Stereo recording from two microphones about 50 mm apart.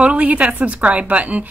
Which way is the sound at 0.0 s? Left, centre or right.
Right.